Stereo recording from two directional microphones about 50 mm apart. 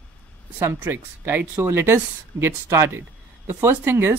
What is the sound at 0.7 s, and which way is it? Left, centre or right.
Speech, right.